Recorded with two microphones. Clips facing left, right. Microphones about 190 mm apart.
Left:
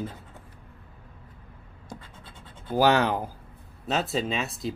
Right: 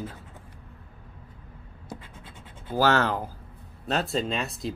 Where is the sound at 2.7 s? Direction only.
15° left (ahead or behind).